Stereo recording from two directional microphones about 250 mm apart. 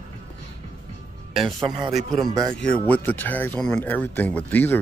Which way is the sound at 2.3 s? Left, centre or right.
Centre.